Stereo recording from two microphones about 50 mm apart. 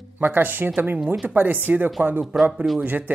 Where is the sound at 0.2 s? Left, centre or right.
Right.